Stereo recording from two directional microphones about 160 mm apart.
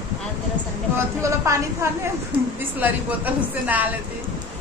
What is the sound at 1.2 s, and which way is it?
A woman's voice, 20° right (ahead or behind).